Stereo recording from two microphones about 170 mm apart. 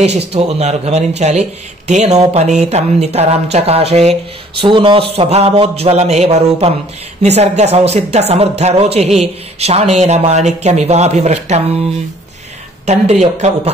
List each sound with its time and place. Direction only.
0.3 s speech: 40° right (ahead or behind)
12.8 s speech: 40° right (ahead or behind)